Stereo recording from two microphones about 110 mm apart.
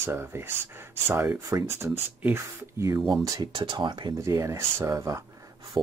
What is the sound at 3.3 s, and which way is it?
Speech, 40° right (ahead or behind).